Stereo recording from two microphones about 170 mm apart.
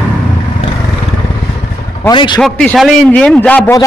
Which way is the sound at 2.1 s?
30° left (ahead or behind).